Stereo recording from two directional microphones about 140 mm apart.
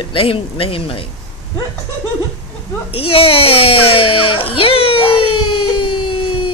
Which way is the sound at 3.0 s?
40° left (ahead or behind).